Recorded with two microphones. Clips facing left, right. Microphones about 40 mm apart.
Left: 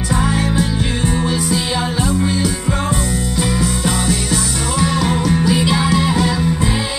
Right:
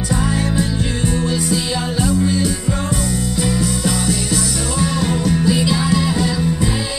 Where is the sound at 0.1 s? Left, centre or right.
Left.